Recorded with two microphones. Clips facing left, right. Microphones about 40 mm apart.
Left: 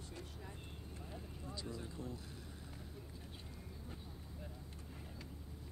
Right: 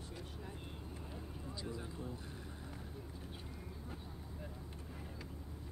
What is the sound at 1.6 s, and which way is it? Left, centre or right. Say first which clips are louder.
Speech: right 2 dB; centre.